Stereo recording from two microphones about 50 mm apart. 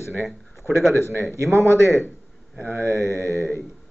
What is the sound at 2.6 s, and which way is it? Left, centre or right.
Speech, left.